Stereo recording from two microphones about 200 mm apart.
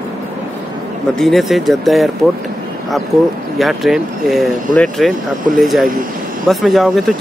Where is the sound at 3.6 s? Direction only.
Centre (ahead or behind).